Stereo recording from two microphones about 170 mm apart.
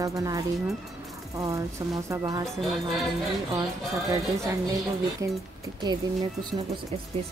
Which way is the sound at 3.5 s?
20° right (ahead or behind).